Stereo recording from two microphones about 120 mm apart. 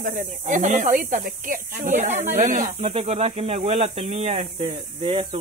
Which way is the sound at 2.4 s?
90° right.